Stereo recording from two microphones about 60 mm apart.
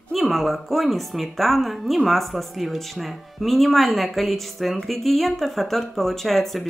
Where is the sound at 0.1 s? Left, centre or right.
Centre.